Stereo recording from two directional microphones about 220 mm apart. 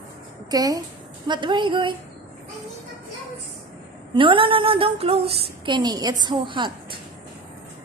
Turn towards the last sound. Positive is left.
turn(degrees=-20)  # may be behind; listen again after turning